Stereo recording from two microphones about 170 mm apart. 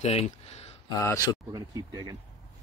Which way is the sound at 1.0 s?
15° left (ahead or behind).